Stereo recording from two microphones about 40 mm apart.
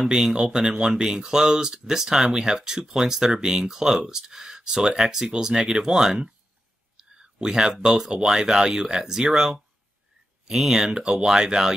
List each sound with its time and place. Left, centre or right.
0.0 s speech: centre
7.0 s a sound: centre
8.1 s speech: centre
10.9 s speech: right